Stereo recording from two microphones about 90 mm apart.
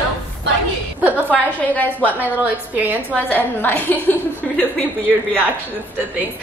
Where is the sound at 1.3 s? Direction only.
15° left (ahead or behind).